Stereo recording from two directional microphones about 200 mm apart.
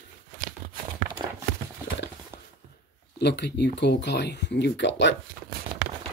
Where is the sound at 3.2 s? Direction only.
60° left (ahead or behind).